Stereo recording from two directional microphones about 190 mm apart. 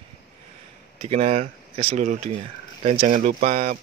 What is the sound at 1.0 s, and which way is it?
Speech, 35° right (ahead or behind).